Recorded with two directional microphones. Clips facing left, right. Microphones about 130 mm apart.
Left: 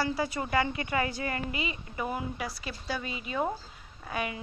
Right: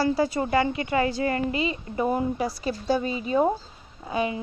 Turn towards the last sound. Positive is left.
turn(degrees=-25)  # may be behind; listen again after turning